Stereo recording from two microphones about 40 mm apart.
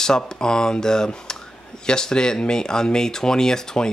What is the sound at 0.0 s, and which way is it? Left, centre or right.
Speech, centre.